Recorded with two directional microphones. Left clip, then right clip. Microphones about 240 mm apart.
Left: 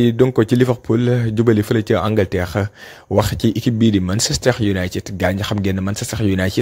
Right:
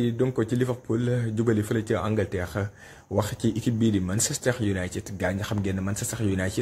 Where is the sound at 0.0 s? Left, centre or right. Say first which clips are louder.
Left 11 dB; left.